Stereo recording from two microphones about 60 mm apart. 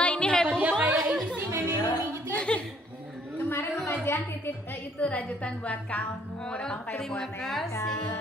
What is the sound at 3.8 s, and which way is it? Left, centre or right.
A woman's voice, left.